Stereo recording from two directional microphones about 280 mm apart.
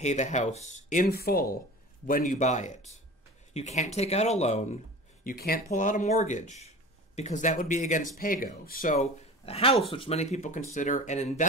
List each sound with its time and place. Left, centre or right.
0.0 s speech: left